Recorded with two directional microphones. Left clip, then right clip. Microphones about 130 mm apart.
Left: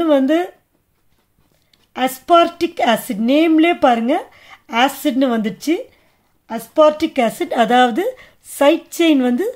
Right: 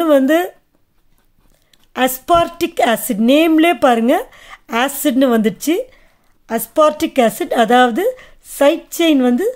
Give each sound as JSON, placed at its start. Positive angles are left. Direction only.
{"t": 0.0, "sound": "speech", "side_deg": -45}
{"t": 1.7, "sound": "speech", "side_deg": -45}
{"t": 6.4, "sound": "speech", "side_deg": -55}
{"t": 6.9, "sound": "speech", "side_deg": -40}